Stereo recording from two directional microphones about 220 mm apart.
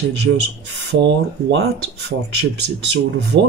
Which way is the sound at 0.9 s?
50° right (ahead or behind).